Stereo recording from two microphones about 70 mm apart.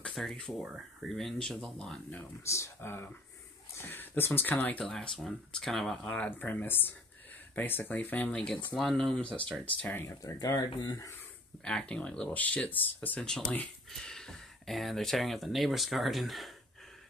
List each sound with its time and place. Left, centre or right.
0.0 s speech: centre
2.4 s speech: left
4.9 s speech: centre
6.0 s speech: left
8.3 s speech: centre
10.0 s speech: left
11.6 s speech: centre
14.0 s speech: centre